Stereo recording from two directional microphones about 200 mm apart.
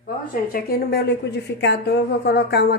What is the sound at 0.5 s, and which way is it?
A woman's voice, 50° left (ahead or behind).